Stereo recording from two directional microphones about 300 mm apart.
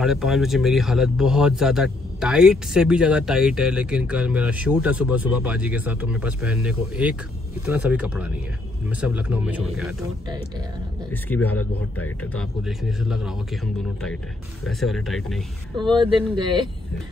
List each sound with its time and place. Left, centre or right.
0.0 s speech: centre
11.2 s speech: centre
14.6 s speech: centre
15.9 s speech: centre